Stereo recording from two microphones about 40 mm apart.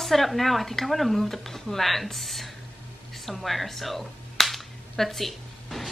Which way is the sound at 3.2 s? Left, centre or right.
Centre.